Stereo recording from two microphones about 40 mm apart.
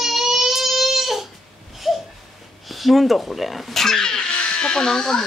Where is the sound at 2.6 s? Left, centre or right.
Centre.